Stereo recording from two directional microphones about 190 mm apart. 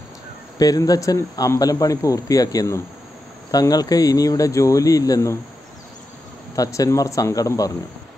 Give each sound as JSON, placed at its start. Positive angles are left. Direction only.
{"t": 0.6, "sound": "a man's voice", "side_deg": 20}
{"t": 6.5, "sound": "speech", "side_deg": 20}